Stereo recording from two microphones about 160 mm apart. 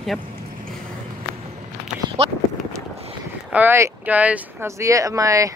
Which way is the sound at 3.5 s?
10° right (ahead or behind).